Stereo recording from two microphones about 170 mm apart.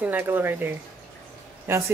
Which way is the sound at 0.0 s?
10° right (ahead or behind).